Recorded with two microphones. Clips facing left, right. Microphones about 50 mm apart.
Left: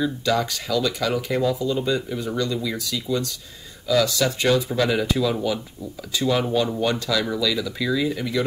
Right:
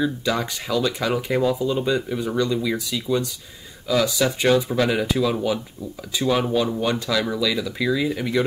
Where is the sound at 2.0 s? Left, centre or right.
Centre.